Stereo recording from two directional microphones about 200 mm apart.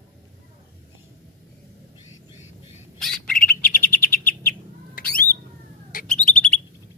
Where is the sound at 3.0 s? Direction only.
5° left (ahead or behind).